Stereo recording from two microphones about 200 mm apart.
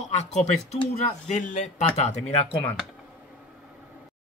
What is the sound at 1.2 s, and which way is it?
A man's voice, 35° left (ahead or behind).